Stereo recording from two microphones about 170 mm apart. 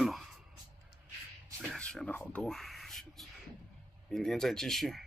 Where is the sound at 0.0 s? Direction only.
Centre (ahead or behind).